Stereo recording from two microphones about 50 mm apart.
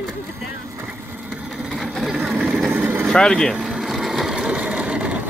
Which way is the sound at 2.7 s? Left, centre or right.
Right.